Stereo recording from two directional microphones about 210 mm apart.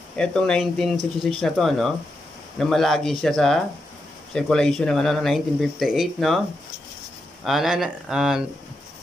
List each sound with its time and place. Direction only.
0.1 s speech: 5° left (ahead or behind)
7.4 s speech: centre (ahead or behind)